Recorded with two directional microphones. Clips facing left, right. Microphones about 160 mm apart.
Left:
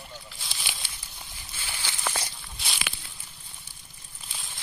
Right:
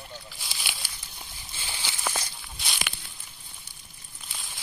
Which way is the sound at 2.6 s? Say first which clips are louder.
Right 1 dB; 5° left (ahead or behind).